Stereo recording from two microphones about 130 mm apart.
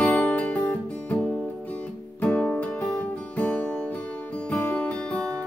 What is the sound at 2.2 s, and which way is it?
Music, 10° left (ahead or behind).